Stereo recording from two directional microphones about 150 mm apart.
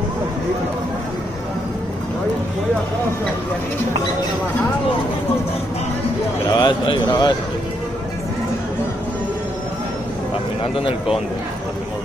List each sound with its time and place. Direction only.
6.5 s a man's voice: 30° left (ahead or behind)